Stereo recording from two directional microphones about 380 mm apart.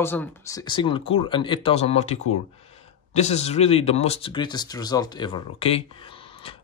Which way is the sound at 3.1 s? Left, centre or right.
Centre.